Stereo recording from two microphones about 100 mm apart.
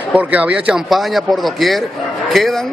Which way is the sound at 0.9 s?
Centre (ahead or behind).